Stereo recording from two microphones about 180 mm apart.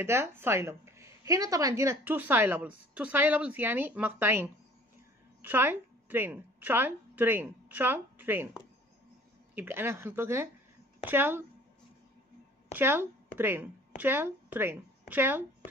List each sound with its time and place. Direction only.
0.0 s a woman's voice: 15° right (ahead or behind)
9.6 s a woman's voice: 10° right (ahead or behind)
12.7 s speech: 10° right (ahead or behind)